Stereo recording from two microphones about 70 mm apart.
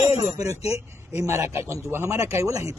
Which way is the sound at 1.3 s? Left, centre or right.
Right.